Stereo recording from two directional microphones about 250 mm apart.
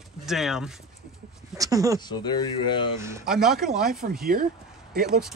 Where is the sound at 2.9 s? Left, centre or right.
Centre.